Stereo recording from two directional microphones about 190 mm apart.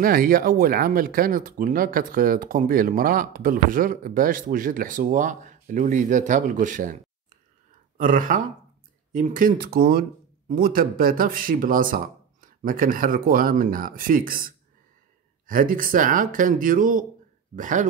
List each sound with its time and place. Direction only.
0.0 s speech: 50° right (ahead or behind)
8.0 s speech: 45° right (ahead or behind)